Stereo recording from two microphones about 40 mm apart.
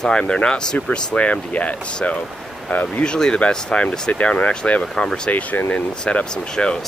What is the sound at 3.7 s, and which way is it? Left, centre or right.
Speech, left.